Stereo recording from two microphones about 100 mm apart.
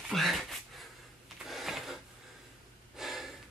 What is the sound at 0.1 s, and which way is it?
Dog, centre (ahead or behind).